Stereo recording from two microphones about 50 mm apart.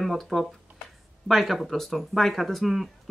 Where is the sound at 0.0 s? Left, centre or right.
Centre.